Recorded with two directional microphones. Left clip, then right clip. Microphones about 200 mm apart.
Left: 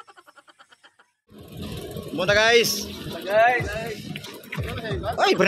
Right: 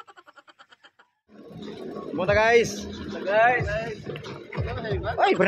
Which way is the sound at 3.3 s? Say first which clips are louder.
Left 1 dB; 45° left (ahead or behind).